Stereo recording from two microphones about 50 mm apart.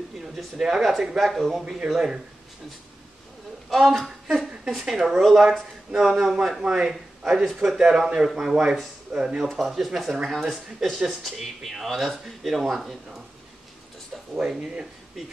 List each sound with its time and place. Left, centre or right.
0.2 s a man's voice: centre
3.7 s a man's voice: centre; by 9.4 s right
9.4 s speech: centre
14.3 s a man's voice: centre